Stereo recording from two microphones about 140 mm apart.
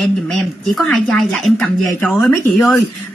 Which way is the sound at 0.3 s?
Centre (ahead or behind).